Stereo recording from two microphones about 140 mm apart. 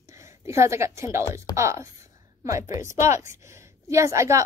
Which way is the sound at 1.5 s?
20° right (ahead or behind).